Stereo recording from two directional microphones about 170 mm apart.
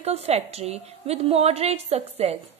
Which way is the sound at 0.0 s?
40° right (ahead or behind).